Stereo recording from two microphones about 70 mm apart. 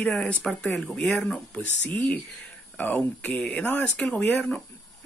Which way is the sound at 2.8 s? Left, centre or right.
Left.